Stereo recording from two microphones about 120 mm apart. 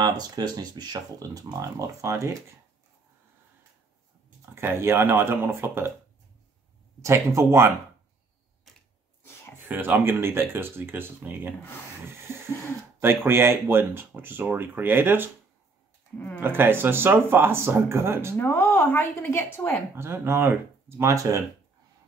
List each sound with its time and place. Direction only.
0.0 s speech: 35° right (ahead or behind)
4.6 s speech: 20° right (ahead or behind)
7.0 s speech: 25° right (ahead or behind)
8.7 s a sound: centre (ahead or behind)
9.7 s speech: 15° right (ahead or behind)
12.2 s a sound: 20° right (ahead or behind)
13.0 s speech: 20° right (ahead or behind)
16.3 s speech: 20° right (ahead or behind)
18.4 s a woman's voice: 20° left (ahead or behind)
19.9 s speech: 20° right (ahead or behind)